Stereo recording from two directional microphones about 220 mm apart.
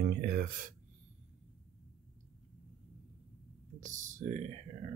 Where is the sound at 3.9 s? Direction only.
35° right (ahead or behind).